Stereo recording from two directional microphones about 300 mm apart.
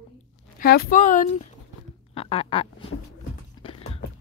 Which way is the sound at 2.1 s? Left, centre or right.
Centre.